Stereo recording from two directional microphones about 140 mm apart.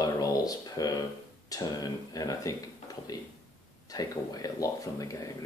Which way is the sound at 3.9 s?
25° left (ahead or behind).